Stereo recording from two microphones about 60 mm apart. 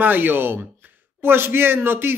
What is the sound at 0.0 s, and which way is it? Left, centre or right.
Speech, right.